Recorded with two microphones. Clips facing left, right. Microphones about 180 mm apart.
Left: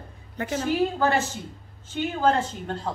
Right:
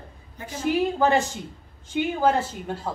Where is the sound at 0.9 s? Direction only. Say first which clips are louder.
Right 2 dB; 15° right (ahead or behind).